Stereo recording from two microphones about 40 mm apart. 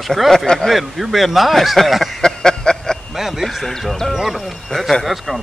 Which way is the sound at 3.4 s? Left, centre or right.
Centre.